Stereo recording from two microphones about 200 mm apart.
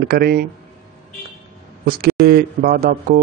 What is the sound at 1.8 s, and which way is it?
Speech, 50° right (ahead or behind).